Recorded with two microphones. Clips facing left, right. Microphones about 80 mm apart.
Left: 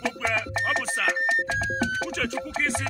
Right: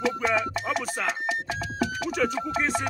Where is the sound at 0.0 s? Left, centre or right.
Centre.